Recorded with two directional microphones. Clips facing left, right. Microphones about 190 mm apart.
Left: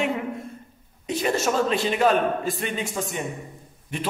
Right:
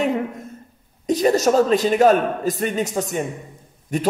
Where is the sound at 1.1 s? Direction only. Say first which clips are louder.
Right 7 dB; 40° right (ahead or behind).